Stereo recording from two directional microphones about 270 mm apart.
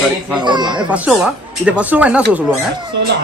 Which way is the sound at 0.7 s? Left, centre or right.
Centre.